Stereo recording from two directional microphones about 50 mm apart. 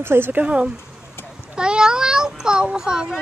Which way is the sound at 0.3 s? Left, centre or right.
Right.